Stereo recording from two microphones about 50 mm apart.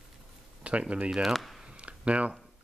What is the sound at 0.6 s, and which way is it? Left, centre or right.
Speech, right.